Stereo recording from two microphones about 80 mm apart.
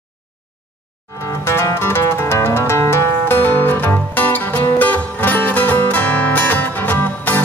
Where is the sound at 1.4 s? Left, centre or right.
Left.